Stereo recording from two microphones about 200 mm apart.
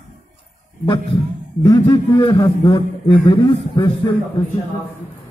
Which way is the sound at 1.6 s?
20° left (ahead or behind).